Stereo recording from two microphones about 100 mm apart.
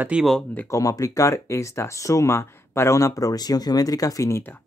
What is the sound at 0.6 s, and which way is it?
Speech, 35° left (ahead or behind).